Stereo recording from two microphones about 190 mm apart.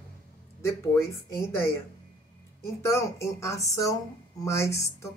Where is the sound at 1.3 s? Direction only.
15° left (ahead or behind).